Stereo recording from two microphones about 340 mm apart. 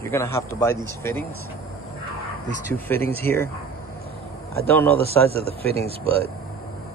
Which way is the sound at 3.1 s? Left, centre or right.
Centre.